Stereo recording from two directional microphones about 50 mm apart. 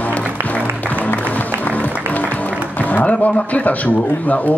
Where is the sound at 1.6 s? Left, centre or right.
Left.